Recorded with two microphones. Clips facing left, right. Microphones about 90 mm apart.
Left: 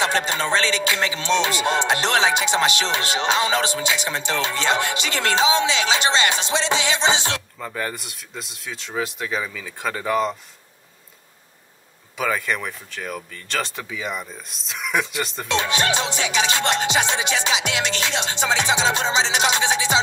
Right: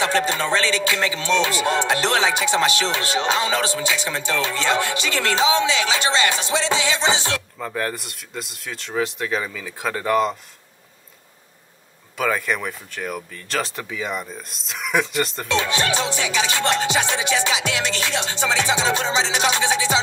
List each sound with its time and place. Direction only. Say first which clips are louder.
0.0 s speech: right 1 dB; 20° left (ahead or behind)
7.5 s speech: right 2 dB; centre (ahead or behind)
12.2 s speech: right 1 dB; centre (ahead or behind)
15.4 s speech: left 3 dB; 20° left (ahead or behind)